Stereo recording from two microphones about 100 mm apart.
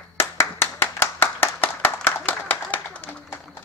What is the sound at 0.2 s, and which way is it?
Clapping, 25° left (ahead or behind).